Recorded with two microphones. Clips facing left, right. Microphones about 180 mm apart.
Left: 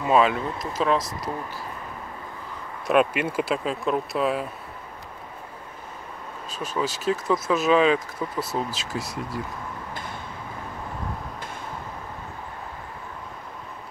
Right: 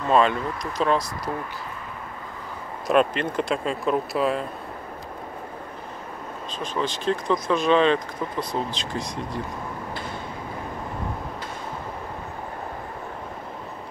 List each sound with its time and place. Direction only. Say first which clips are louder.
0.0 s speech: even; 5° left (ahead or behind)
2.9 s speech: even; 5° left (ahead or behind)
6.6 s speech: even; 5° left (ahead or behind)